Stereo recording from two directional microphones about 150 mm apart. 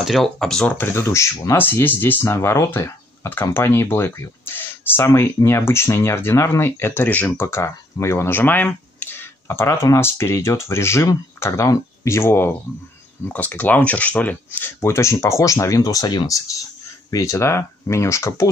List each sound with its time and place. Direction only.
0.0 s speech: centre (ahead or behind); by 18.5 s 20° left (ahead or behind)